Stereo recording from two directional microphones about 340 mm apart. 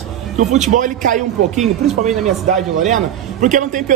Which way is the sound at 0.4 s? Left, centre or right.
Right.